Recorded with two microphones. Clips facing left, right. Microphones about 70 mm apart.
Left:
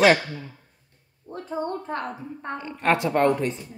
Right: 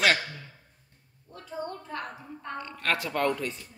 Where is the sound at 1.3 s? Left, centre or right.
Left.